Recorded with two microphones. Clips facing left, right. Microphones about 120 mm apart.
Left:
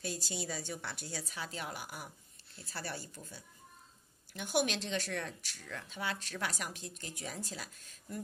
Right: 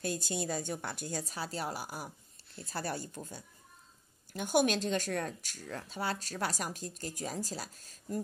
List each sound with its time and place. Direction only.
0.0 s a woman's voice: 50° right (ahead or behind)